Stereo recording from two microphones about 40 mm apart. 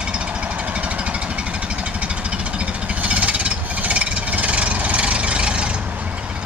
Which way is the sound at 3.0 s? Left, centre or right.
Right.